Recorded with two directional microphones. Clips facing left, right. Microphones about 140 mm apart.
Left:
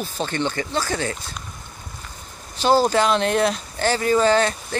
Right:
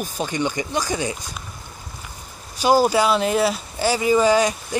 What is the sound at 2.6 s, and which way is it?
Speech, 10° right (ahead or behind).